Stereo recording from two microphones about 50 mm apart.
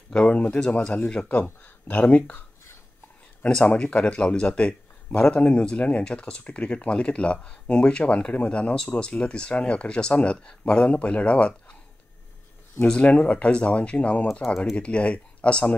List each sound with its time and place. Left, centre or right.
0.1 s a man's voice: left
3.6 s a man's voice: left
13.0 s a man's voice: left